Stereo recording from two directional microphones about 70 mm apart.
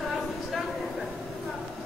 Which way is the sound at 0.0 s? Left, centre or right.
Centre.